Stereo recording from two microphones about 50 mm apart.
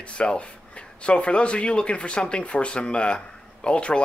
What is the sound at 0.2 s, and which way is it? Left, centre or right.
Speech, left.